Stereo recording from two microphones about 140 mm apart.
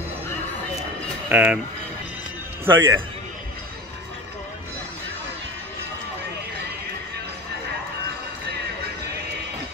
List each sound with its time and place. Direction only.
1.3 s a man's voice: 10° right (ahead or behind)
2.6 s a man's voice: 15° right (ahead or behind)